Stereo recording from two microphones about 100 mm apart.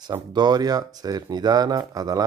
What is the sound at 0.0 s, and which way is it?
Speech, 45° right (ahead or behind).